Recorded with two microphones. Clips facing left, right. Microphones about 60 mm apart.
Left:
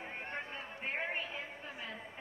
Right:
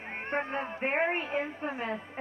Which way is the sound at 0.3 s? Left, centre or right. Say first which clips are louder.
Right 11 dB; right.